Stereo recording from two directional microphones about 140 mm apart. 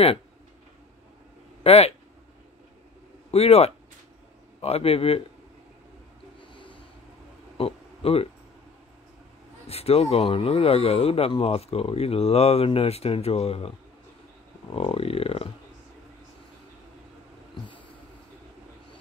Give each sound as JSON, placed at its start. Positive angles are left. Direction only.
{"t": 1.6, "sound": "speech", "side_deg": 45}
{"t": 3.3, "sound": "speech", "side_deg": 50}
{"t": 6.4, "sound": "snort", "side_deg": 35}
{"t": 7.5, "sound": "a sound", "side_deg": 45}
{"t": 9.7, "sound": "speech", "side_deg": 45}
{"t": 14.7, "sound": "speech", "side_deg": 45}